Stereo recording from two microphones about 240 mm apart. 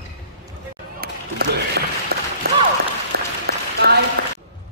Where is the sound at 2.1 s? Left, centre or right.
Right.